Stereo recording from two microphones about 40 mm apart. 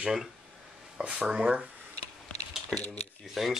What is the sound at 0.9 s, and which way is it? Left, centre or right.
Speech, right.